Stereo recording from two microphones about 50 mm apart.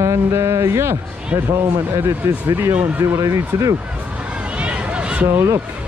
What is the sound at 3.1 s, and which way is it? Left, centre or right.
Speech, right.